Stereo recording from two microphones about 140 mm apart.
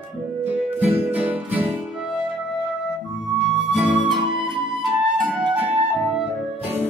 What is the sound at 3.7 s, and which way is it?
Music, 10° right (ahead or behind).